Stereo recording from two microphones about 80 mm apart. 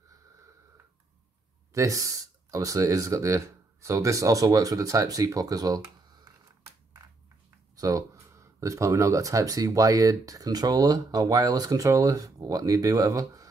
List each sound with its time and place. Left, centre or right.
1.7 s speech: right
7.7 s speech: right